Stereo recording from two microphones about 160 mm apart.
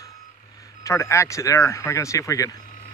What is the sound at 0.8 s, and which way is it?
Speech, 15° left (ahead or behind).